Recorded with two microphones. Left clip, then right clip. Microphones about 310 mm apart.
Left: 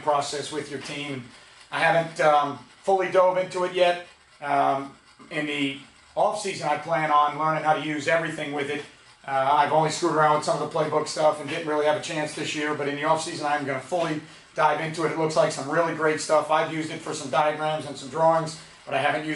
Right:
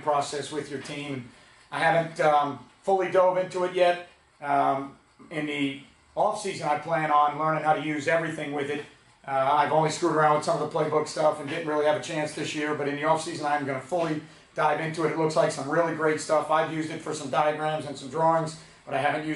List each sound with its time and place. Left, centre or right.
0.0 s speech: centre
2.4 s speech: right
3.0 s speech: centre
10.5 s speech: centre
10.8 s speech: centre